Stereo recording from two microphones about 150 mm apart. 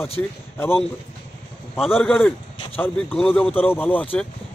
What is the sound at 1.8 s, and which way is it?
Speech, centre (ahead or behind).